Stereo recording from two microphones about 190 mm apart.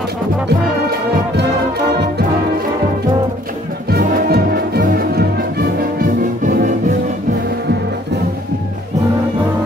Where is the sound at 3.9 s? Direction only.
55° right (ahead or behind).